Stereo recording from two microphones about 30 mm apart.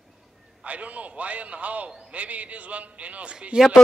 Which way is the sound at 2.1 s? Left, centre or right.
Right.